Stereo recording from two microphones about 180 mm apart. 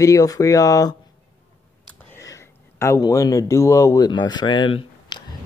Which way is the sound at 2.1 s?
15° left (ahead or behind).